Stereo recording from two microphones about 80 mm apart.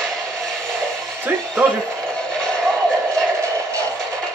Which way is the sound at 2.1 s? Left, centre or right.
Centre.